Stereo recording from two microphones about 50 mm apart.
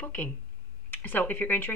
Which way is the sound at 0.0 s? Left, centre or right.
Left.